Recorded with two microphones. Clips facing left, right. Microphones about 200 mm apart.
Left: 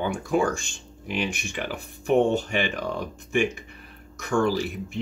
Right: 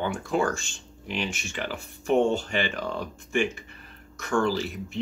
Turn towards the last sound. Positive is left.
turn(degrees=15)  # may be behind; listen again after turning